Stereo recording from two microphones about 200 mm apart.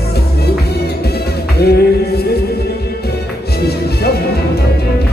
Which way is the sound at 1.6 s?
50° left (ahead or behind).